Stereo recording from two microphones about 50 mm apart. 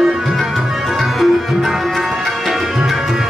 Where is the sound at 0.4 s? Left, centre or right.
Centre.